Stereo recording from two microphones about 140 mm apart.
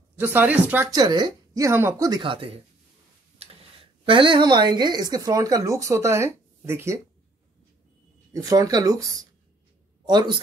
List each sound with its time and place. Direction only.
0.2 s speech: 15° right (ahead or behind)
0.9 s speech: 30° right (ahead or behind)
2.0 s speech: 35° right (ahead or behind)
4.0 s speech: 35° right (ahead or behind); by 7.0 s 20° right (ahead or behind)
8.3 s speech: 25° right (ahead or behind)